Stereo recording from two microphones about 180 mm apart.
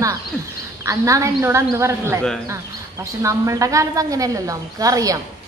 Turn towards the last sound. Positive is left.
turn(degrees=-20)  # may be behind; listen again after turning